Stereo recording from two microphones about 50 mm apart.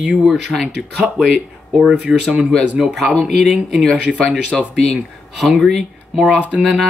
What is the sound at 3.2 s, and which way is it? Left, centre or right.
Speech, centre.